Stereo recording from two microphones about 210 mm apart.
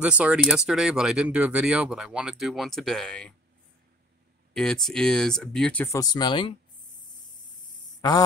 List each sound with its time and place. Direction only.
0.0 s speech: 5° right (ahead or behind)
4.6 s speech: centre (ahead or behind)
5.9 s speech: 20° left (ahead or behind)
7.1 s a sound: 20° left (ahead or behind)